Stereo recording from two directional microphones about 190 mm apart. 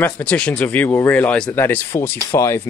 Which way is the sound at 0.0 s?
5° left (ahead or behind).